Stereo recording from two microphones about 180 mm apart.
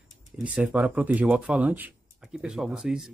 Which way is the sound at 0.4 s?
10° right (ahead or behind).